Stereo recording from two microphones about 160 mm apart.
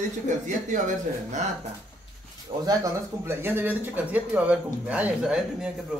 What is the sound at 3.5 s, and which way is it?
A man's voice, 10° right (ahead or behind).